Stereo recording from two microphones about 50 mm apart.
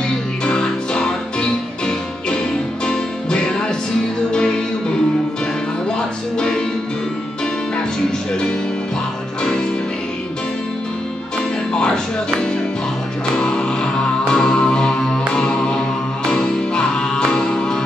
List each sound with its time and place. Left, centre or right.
0.5 s music: centre
5.9 s music: centre
9.4 s music: centre
11.7 s music: centre